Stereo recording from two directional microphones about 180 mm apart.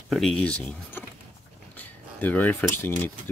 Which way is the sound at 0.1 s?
Centre (ahead or behind).